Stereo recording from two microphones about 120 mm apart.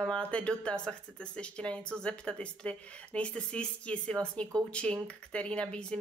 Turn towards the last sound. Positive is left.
turn(degrees=5)  # may be behind; listen again after turning